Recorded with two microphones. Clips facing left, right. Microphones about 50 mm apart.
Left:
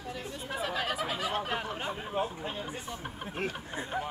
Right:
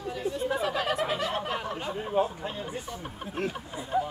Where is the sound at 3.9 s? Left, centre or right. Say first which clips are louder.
Right 8 dB; left.